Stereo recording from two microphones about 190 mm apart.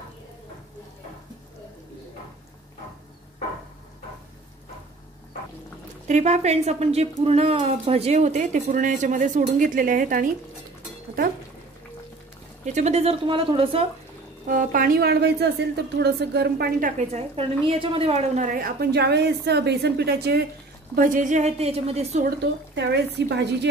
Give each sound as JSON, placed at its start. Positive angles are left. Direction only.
{"t": 6.0, "sound": "a woman's voice", "side_deg": -35}
{"t": 12.6, "sound": "a woman's voice", "side_deg": -35}
{"t": 14.5, "sound": "a woman's voice", "side_deg": -45}
{"t": 17.1, "sound": "a woman's voice", "side_deg": -30}
{"t": 20.9, "sound": "a woman's voice", "side_deg": -45}
{"t": 22.4, "sound": "a woman's voice", "side_deg": -65}